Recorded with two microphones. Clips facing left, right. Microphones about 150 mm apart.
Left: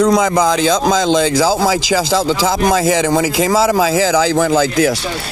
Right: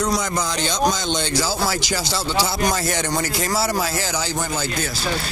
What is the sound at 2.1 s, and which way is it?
Speech, 90° left.